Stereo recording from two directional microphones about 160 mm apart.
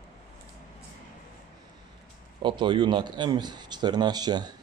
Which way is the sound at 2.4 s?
30° right (ahead or behind).